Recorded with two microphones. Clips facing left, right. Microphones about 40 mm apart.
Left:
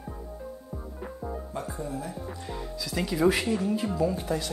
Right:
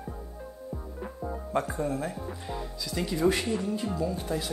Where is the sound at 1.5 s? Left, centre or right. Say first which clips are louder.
Right 9 dB; right.